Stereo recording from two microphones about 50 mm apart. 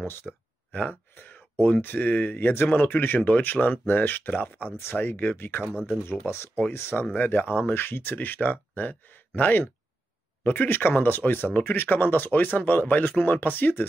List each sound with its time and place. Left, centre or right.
0.0 s speech: left
0.7 s gasp: left
1.1 s a sound: left
1.8 s speech: left
6.3 s speech: left
7.2 s speech: left